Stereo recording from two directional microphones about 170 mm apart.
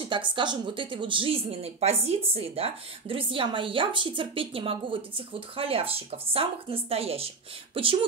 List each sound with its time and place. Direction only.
0.0 s speech: 30° right (ahead or behind)